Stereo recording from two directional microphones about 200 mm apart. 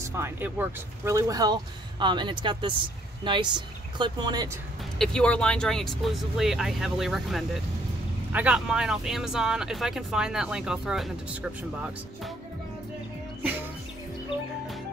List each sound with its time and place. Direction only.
0.0 s speech: 15° right (ahead or behind)
4.9 s speech: 5° left (ahead or behind)